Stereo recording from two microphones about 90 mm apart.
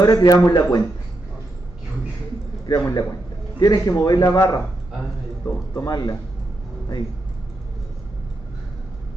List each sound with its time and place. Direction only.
0.0 s a man's voice: 45° left (ahead or behind)
2.6 s a man's voice: 45° left (ahead or behind)
5.8 s a man's voice: 45° left (ahead or behind)